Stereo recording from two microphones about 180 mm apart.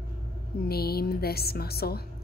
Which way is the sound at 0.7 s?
60° left (ahead or behind).